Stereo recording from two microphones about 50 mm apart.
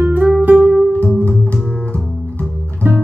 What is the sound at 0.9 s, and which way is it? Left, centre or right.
Music, left.